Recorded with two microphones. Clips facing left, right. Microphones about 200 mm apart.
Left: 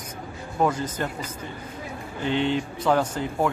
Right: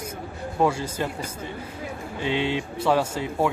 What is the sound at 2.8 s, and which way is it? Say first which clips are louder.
Speech: even; 5° right (ahead or behind).